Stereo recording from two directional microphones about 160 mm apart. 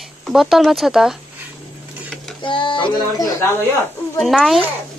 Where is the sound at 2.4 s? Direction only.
30° left (ahead or behind).